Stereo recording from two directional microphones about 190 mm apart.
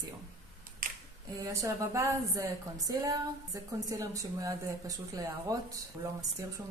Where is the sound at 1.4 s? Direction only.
15° right (ahead or behind).